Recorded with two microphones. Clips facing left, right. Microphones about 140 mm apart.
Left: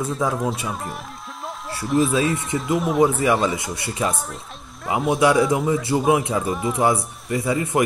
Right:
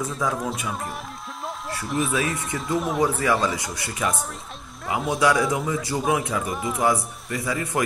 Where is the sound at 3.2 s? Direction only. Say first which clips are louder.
Left 3 dB; 20° left (ahead or behind).